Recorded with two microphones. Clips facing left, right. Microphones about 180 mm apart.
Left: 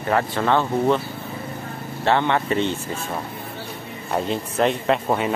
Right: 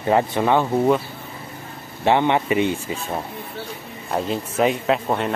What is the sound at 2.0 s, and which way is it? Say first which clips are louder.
Speech: right 2 dB; 15° right (ahead or behind).